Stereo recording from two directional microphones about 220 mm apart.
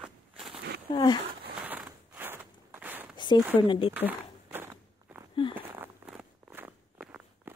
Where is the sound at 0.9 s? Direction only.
25° left (ahead or behind).